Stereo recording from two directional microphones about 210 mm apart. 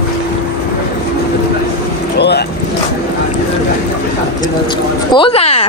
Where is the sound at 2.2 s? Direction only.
50° left (ahead or behind).